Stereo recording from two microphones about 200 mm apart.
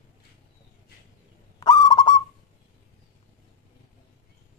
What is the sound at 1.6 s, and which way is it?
Owl, 20° left (ahead or behind).